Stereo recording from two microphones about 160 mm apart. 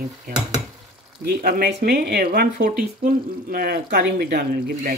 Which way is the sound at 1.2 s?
70° right (ahead or behind).